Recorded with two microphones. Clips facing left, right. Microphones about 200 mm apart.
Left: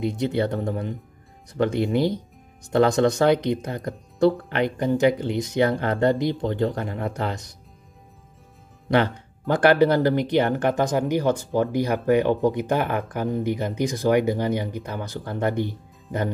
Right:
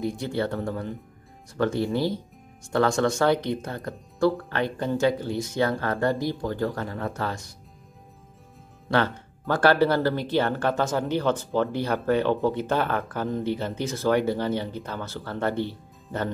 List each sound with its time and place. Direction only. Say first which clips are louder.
0.0 s speech: left 4 dB; 20° left (ahead or behind)
8.9 s speech: left 3 dB; 15° left (ahead or behind)